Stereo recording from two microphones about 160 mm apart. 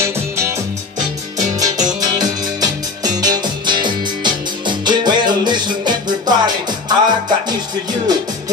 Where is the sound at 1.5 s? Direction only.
20° right (ahead or behind).